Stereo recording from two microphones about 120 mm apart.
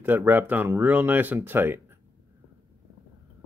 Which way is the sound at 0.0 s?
15° right (ahead or behind).